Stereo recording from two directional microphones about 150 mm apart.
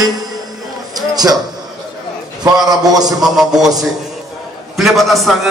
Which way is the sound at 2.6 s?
25° right (ahead or behind).